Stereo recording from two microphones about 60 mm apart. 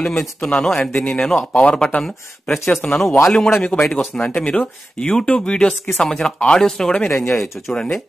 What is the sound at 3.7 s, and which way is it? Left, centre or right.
Speech, centre.